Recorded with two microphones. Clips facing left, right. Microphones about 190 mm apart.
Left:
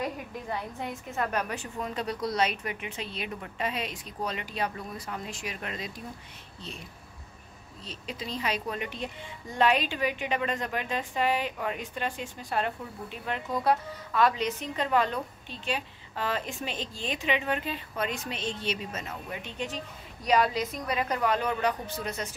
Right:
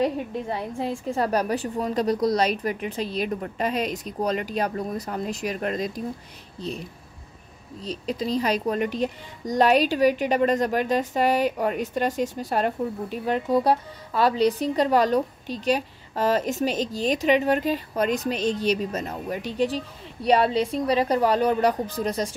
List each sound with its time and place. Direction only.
0.0 s a woman's voice: 25° right (ahead or behind); by 6.0 s 40° right (ahead or behind)
7.8 s a woman's voice: 40° right (ahead or behind)